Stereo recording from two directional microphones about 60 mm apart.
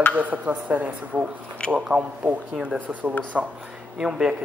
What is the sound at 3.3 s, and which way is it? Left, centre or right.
Speech, centre.